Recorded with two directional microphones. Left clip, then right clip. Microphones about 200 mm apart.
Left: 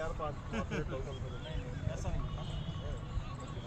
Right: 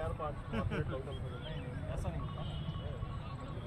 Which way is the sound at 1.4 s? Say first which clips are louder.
Left 1 dB; 5° right (ahead or behind).